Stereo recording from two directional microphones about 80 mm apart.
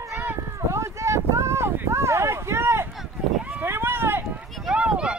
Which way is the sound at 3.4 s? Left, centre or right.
Right.